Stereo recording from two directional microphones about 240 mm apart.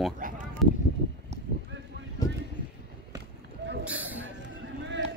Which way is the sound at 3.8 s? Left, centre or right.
Centre.